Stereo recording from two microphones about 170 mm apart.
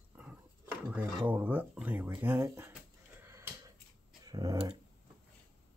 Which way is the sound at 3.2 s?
15° right (ahead or behind).